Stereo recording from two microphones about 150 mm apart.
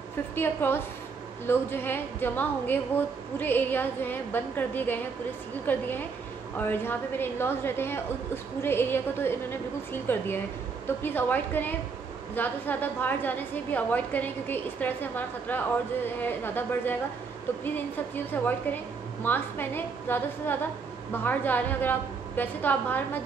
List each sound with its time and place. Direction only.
0.4 s a woman's voice: 15° left (ahead or behind)